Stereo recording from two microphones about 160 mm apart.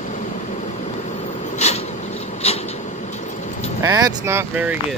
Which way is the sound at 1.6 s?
45° left (ahead or behind).